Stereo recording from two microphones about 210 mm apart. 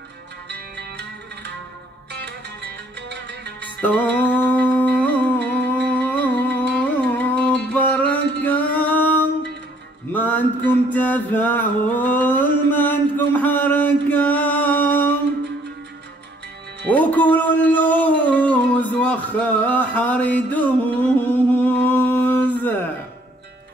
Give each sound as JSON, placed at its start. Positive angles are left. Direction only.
{"t": 0.5, "sound": "music", "side_deg": -55}
{"t": 3.8, "sound": "music", "side_deg": 5}
{"t": 10.1, "sound": "a sound", "side_deg": 5}
{"t": 16.8, "sound": "music", "side_deg": 5}